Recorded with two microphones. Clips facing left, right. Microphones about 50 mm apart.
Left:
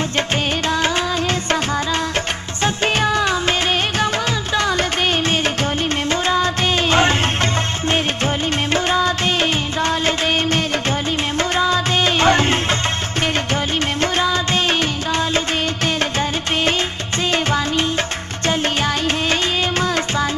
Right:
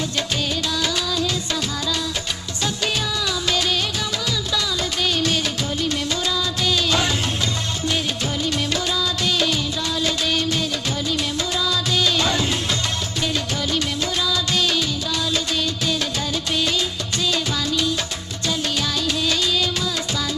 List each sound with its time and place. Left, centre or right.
2.6 s music: left
4.6 s music: left
6.2 s music of bollywood: left
8.7 s music of bollywood: left
11.5 s music: left
14.1 s music: left
17.3 s music: left